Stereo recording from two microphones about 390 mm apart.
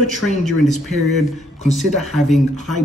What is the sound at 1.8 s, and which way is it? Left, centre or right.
Speech, centre.